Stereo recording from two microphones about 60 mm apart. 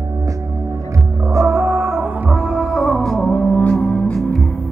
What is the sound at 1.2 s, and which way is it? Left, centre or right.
Music, right.